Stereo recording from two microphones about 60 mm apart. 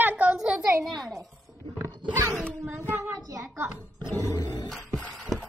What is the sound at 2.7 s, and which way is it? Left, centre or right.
Child singing, right.